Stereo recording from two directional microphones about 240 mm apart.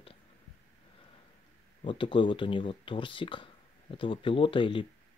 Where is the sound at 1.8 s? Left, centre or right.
Left.